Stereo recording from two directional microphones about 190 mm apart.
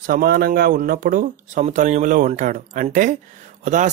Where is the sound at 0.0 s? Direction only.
50° right (ahead or behind).